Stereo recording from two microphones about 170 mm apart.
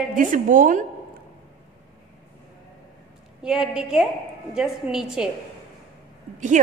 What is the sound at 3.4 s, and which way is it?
A woman's voice, 5° right (ahead or behind).